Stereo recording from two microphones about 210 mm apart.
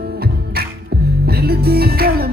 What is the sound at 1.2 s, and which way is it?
Music, 45° right (ahead or behind).